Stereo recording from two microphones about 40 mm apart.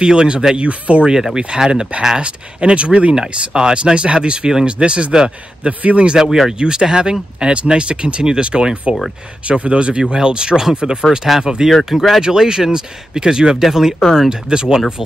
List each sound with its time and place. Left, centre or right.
0.0 s speech: right
0.6 s a man's voice: right
1.0 s speech: centre
3.2 s a man's voice: centre; by 6.1 s right
6.1 s speech: centre
6.6 s speech: right
11.9 s speech: centre
12.2 s speech: centre